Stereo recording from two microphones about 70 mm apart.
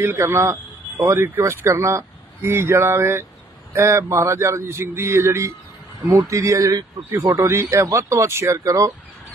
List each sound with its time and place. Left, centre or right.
0.0 s speech: right
7.3 s speech: right